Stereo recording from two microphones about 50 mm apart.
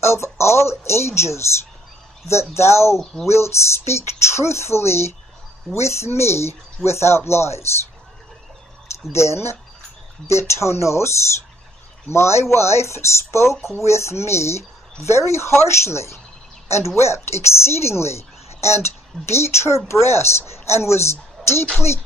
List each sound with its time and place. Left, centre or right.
0.0 s speech: left
2.5 s speech: left
3.0 s speech: centre
3.3 s speech: left
9.1 s speech: left